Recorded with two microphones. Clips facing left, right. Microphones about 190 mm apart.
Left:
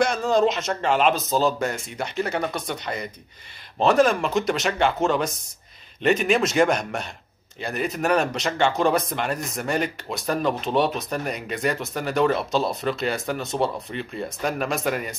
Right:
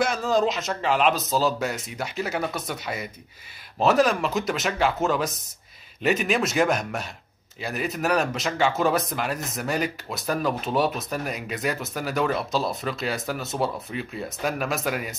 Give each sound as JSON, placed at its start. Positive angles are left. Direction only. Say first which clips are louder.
{"t": 0.0, "sound": "speech", "louder": "left 3 dB", "side_deg": 0}